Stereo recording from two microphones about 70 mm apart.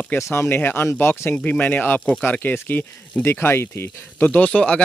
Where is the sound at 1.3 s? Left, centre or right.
Left.